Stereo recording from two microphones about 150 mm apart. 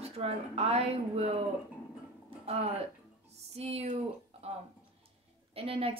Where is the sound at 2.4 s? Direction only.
45° right (ahead or behind).